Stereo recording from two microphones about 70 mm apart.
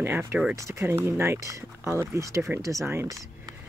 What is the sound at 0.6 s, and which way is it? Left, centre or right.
Speech, right.